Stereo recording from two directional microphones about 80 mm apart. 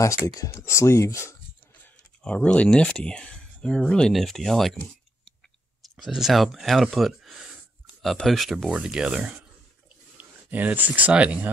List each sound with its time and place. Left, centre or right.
0.0 s speech: left
2.2 s speech: centre
5.8 s speech: centre
10.1 s speech: right